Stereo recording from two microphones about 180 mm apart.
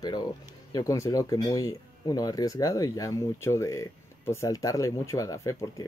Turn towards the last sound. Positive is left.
turn(degrees=20)  # may be behind; listen again after turning